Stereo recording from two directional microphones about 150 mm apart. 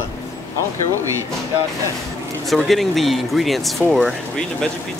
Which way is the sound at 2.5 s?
Centre (ahead or behind).